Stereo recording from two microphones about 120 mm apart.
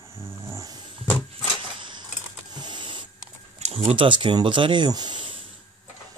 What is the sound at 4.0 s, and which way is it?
Speech, 45° right (ahead or behind).